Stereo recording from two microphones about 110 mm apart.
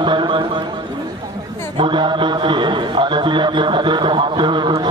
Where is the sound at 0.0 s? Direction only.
45° right (ahead or behind).